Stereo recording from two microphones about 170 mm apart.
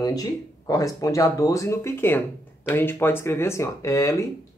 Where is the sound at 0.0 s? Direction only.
20° left (ahead or behind).